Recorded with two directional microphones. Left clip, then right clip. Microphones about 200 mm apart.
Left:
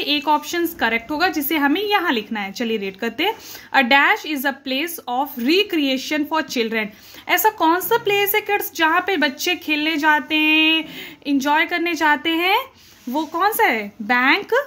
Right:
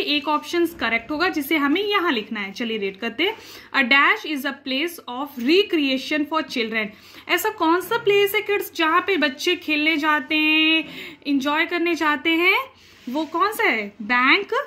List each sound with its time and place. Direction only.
0.0 s a woman's voice: 55° left (ahead or behind)